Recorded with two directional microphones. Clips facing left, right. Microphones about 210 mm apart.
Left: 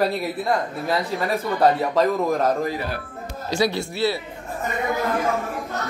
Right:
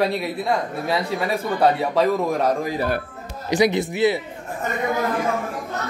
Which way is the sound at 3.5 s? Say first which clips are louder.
Right 4 dB; 20° right (ahead or behind).